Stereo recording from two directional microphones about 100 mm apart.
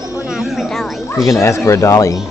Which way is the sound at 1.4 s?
30° left (ahead or behind).